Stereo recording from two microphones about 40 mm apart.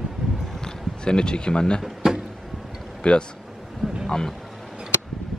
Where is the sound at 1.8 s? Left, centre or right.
Centre.